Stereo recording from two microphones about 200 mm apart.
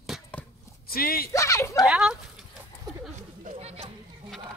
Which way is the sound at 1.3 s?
15° left (ahead or behind).